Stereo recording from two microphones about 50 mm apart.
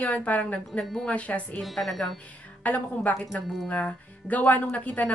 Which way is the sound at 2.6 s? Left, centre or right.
Left.